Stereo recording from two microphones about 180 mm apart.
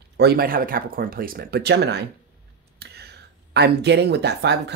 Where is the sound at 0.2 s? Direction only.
60° right (ahead or behind).